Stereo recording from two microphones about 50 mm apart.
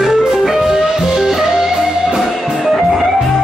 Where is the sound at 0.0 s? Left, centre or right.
Centre.